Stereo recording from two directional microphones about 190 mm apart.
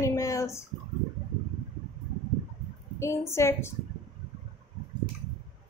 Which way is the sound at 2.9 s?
15° left (ahead or behind).